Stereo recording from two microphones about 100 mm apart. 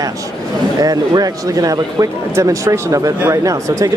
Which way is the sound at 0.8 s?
35° right (ahead or behind).